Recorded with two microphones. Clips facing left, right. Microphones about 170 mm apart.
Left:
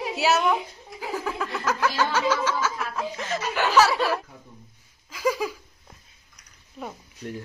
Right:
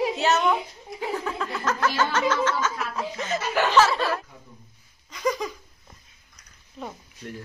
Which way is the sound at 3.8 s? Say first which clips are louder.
Left 1 dB; 10° left (ahead or behind).